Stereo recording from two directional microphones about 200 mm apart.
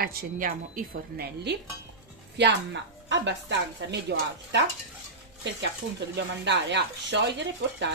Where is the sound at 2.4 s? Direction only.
60° right (ahead or behind).